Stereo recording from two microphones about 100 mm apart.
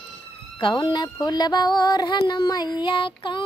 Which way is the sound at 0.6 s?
50° left (ahead or behind).